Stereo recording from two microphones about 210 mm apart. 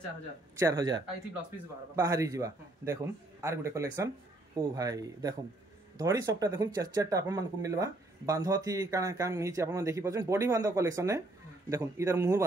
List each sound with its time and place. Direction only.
0.6 s speech: 15° right (ahead or behind)